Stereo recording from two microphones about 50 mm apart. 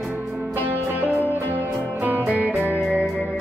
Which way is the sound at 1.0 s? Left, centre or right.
Right.